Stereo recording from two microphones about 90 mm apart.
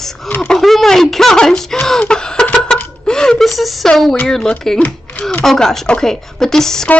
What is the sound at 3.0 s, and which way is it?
Speech, 10° left (ahead or behind).